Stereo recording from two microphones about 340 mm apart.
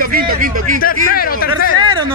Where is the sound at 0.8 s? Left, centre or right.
Left.